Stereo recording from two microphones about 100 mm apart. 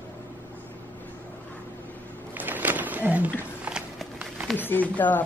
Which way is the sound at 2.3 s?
20° right (ahead or behind).